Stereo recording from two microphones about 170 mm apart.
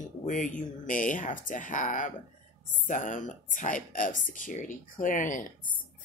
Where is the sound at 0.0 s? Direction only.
50° left (ahead or behind).